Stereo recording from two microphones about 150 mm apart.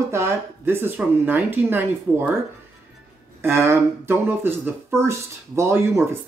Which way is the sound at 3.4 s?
15° right (ahead or behind).